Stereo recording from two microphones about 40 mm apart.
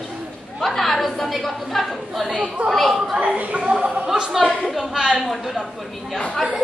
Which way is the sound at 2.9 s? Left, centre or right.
Centre.